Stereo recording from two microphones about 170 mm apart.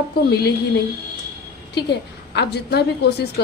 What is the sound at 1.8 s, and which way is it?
A woman's voice, 75° left (ahead or behind).